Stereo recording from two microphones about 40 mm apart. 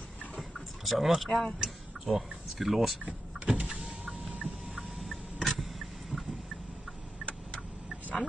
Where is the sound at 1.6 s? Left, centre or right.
Centre.